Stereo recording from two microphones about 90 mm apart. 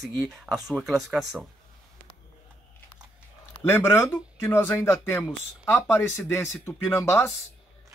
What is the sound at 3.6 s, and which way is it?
Speech, 25° left (ahead or behind).